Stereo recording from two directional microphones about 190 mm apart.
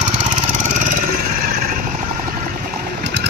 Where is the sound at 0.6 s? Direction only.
40° right (ahead or behind).